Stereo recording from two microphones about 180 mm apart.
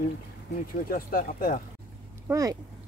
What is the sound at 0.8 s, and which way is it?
Speech, 50° left (ahead or behind).